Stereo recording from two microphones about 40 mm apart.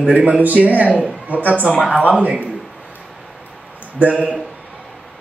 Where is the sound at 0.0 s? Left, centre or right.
Right.